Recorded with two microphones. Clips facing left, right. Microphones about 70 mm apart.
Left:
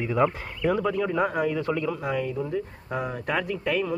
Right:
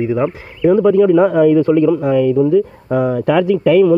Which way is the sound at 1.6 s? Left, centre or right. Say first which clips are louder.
Right 15 dB; right.